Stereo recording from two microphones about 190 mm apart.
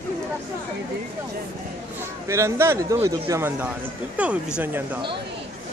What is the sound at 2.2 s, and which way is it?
Speech, 15° right (ahead or behind).